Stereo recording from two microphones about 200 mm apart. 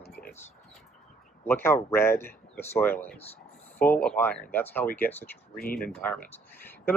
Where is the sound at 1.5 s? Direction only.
10° left (ahead or behind).